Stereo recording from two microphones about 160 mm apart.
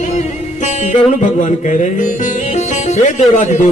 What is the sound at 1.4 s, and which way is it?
Music, 50° left (ahead or behind).